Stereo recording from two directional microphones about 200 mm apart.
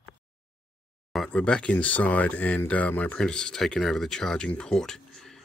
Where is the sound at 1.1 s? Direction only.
5° left (ahead or behind).